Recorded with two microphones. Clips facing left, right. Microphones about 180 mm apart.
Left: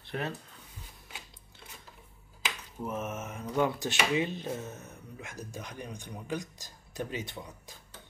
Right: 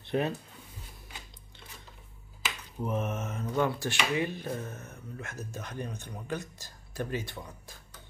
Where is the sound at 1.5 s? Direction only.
5° left (ahead or behind).